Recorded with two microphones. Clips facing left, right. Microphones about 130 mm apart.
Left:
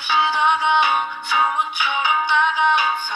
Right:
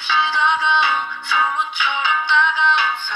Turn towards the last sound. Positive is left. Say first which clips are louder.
# left 1 dB
turn(degrees=10)  # may be behind; listen again after turning